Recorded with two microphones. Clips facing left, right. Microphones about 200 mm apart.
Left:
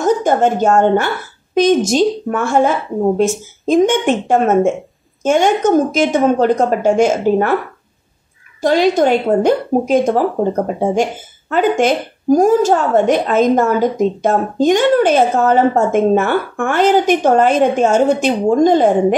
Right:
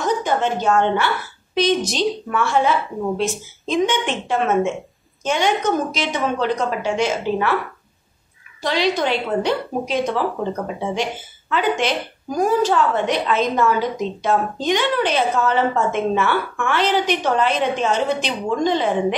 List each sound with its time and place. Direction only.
0.0 s a woman's voice: 45° left (ahead or behind)
8.5 s a woman's voice: 45° left (ahead or behind)